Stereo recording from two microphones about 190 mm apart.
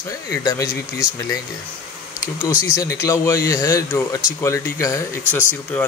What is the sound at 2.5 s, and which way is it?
Speech, 5° right (ahead or behind).